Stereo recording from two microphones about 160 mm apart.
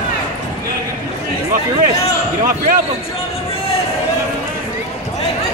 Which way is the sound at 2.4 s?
60° right (ahead or behind).